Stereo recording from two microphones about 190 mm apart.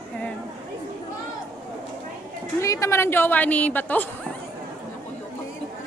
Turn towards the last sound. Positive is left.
turn(degrees=10)  # may be behind; listen again after turning